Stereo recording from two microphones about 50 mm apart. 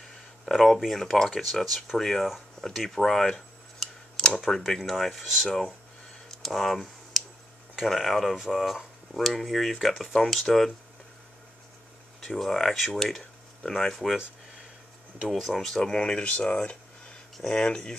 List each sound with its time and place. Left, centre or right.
0.5 s speech: centre
6.3 s computer keyboard: centre
7.7 s speech: centre
12.2 s speech: centre
13.9 s speech: centre
15.2 s speech: centre; by 16.7 s left
17.4 s speech: centre